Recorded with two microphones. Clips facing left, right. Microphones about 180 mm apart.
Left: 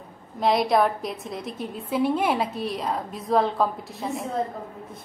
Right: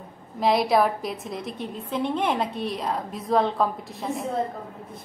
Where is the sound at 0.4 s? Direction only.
Centre (ahead or behind).